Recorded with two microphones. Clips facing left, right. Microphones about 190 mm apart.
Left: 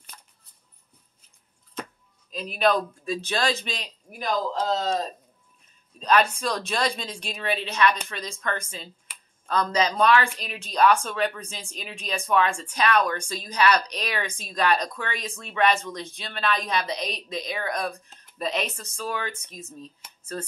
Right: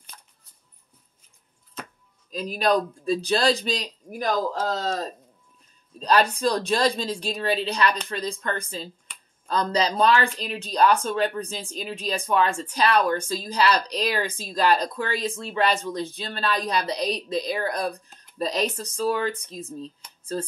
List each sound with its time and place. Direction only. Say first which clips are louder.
2.3 s speech: right 1 dB; 40° right (ahead or behind)
5.9 s speech: right 1 dB; 35° right (ahead or behind)